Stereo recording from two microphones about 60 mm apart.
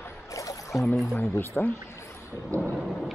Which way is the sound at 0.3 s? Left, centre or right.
Left.